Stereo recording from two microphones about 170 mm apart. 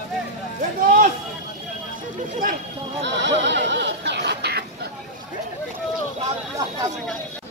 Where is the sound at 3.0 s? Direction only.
90° right; by 4.9 s 75° right (ahead or behind).